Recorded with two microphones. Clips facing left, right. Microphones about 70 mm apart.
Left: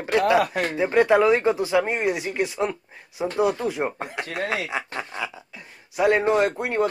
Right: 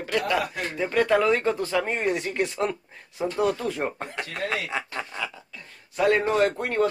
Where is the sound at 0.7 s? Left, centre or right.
Centre.